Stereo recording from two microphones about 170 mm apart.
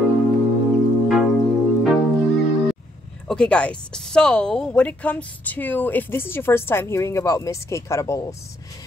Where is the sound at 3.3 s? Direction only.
5° left (ahead or behind).